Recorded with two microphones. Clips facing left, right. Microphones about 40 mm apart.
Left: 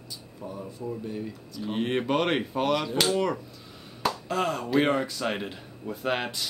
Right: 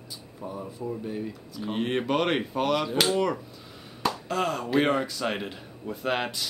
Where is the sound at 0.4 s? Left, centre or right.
Centre.